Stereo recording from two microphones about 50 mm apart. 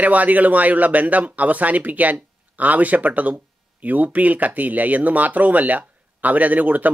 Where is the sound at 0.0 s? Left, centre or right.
Right.